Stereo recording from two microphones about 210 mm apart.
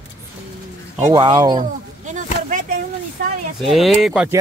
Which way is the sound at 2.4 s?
40° right (ahead or behind).